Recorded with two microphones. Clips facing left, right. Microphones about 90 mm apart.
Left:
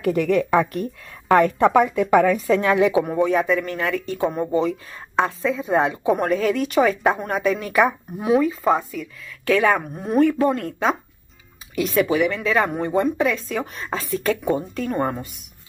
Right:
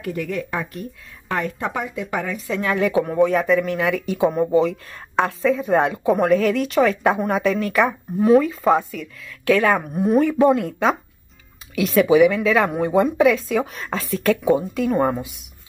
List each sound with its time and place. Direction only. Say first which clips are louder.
0.0 s a woman's voice: left 7 dB; 70° left (ahead or behind); by 2.6 s 50° left (ahead or behind)
2.6 s speech: even; 20° left (ahead or behind)
2.9 s speech: right 1 dB; 5° left (ahead or behind)
12.1 s speech: right 6 dB; 10° right (ahead or behind)
12.4 s speech: right 2 dB; centre (ahead or behind)